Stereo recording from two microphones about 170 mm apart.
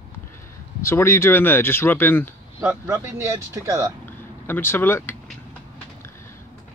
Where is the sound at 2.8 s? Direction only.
15° right (ahead or behind).